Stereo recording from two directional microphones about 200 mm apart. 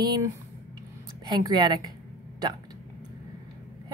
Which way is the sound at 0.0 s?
15° right (ahead or behind).